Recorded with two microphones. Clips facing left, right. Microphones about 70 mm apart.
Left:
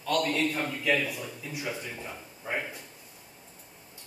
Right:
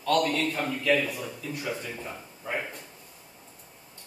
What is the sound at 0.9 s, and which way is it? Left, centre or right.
Speech, centre.